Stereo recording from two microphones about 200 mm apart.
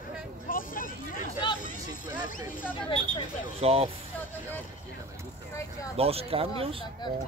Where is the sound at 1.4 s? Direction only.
25° left (ahead or behind).